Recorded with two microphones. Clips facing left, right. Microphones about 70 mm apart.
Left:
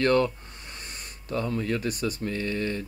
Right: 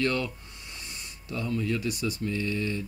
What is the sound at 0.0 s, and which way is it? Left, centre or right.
Speech, left.